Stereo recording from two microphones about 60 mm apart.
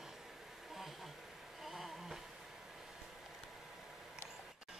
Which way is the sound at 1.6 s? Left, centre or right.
Centre.